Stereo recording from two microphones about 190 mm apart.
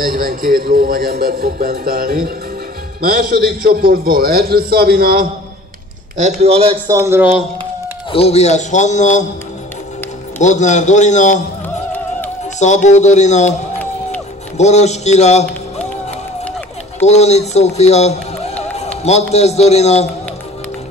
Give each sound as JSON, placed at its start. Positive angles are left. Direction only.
{"t": 0.0, "sound": "a man's voice", "side_deg": -50}
{"t": 6.4, "sound": "a man's voice", "side_deg": -30}
{"t": 6.9, "sound": "a man's voice", "side_deg": -15}
{"t": 8.1, "sound": "a man's voice", "side_deg": 30}
{"t": 10.4, "sound": "a man's voice", "side_deg": 40}
{"t": 12.5, "sound": "a man's voice", "side_deg": 40}
{"t": 14.6, "sound": "a man's voice", "side_deg": 35}
{"t": 17.0, "sound": "a man's voice", "side_deg": 35}